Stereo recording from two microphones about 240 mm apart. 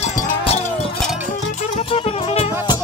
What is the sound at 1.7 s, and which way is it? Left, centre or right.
Music, left.